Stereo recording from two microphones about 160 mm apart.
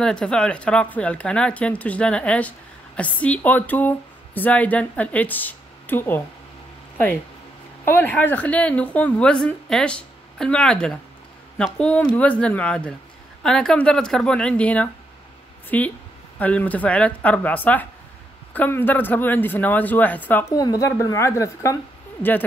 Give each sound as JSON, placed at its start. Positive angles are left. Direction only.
{"t": 0.0, "sound": "speech", "side_deg": 5}
{"t": 7.8, "sound": "speech", "side_deg": 15}
{"t": 20.5, "sound": "speech", "side_deg": 20}